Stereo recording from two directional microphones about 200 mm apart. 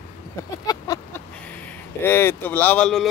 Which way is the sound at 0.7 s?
20° left (ahead or behind).